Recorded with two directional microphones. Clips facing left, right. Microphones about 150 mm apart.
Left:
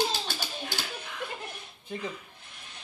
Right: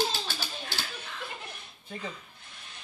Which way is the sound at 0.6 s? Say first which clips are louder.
Left 2 dB; 10° left (ahead or behind).